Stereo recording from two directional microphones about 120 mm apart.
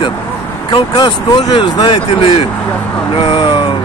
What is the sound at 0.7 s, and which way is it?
Speech, 40° left (ahead or behind).